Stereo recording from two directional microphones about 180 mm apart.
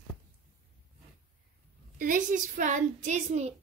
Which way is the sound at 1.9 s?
50° right (ahead or behind).